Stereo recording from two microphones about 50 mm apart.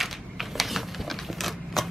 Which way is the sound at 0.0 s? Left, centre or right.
Centre.